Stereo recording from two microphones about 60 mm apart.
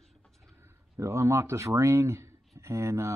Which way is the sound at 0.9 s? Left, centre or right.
Right.